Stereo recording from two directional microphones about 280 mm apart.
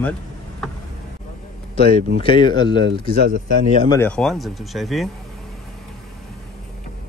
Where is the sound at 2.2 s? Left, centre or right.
Centre.